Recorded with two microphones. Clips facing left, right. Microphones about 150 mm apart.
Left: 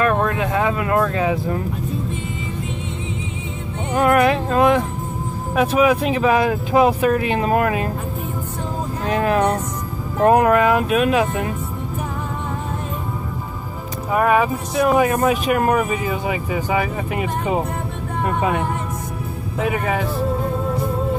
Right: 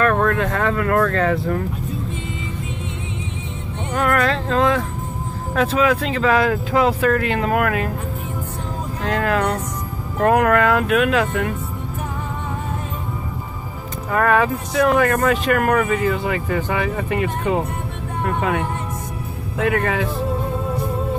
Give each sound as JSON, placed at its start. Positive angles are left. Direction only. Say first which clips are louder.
{"t": 0.0, "sound": "speech", "louder": "right 1 dB", "side_deg": 15}
{"t": 3.9, "sound": "speech", "louder": "left 4 dB", "side_deg": 20}
{"t": 9.0, "sound": "speech", "louder": "left 2 dB", "side_deg": 15}
{"t": 14.1, "sound": "speech", "louder": "left 1 dB", "side_deg": 10}